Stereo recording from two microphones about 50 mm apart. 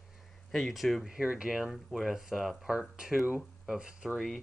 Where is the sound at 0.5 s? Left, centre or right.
Centre.